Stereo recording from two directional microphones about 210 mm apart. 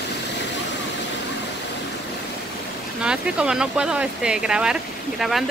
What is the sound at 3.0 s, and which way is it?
Speech, 5° right (ahead or behind).